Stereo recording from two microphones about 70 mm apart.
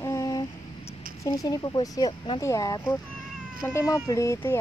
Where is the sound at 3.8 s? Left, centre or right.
Left.